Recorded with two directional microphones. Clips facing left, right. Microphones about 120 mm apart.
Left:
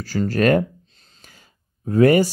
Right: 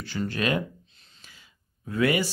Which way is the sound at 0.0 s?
40° left (ahead or behind).